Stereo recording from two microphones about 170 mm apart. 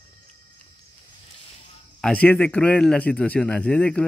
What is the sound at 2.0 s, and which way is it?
A man's voice, 5° left (ahead or behind).